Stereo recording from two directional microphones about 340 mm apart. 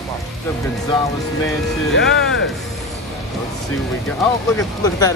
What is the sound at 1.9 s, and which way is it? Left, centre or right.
Speech, left.